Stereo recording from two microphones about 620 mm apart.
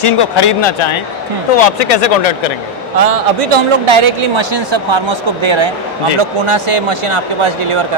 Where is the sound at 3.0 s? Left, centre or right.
Right.